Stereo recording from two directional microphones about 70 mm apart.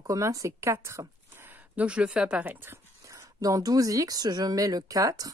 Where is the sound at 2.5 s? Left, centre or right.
Right.